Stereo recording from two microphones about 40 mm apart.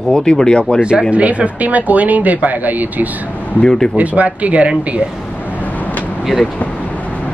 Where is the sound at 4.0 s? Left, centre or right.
Right.